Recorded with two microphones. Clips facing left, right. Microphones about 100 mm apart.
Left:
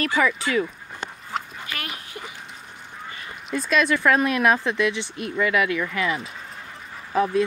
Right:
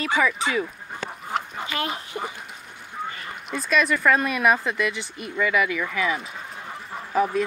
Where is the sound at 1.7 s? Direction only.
25° right (ahead or behind).